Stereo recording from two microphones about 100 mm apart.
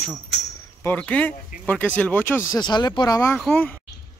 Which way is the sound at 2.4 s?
45° left (ahead or behind).